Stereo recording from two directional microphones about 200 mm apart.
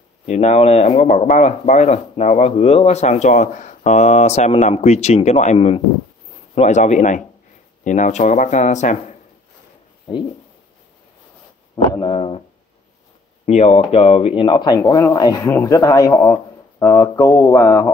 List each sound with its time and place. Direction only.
0.3 s speech: 35° left (ahead or behind)
11.9 s speech: 25° left (ahead or behind)
13.5 s speech: 35° left (ahead or behind)
14.8 s speech: 10° left (ahead or behind)